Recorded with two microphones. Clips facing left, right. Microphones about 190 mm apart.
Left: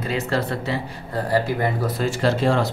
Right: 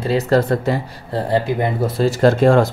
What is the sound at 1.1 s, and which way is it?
Speech, 20° right (ahead or behind).